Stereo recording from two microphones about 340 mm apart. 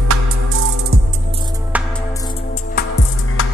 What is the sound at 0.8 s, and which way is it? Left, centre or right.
Music, centre.